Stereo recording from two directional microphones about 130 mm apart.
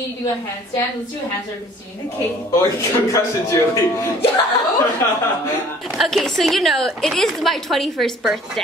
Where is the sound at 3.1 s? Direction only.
25° left (ahead or behind).